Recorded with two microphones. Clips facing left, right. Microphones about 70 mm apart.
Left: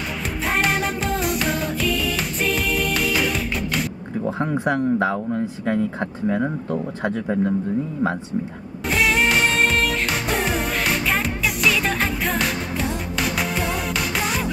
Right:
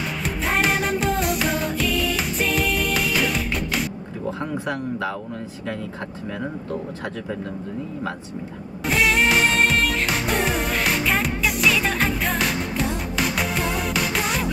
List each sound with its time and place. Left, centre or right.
0.5 s music: centre
4.4 s speech: left
8.9 s music: centre